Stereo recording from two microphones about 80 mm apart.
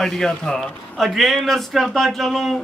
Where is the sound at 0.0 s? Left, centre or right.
Centre.